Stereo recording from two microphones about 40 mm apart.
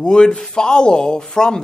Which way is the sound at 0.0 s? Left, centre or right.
Centre.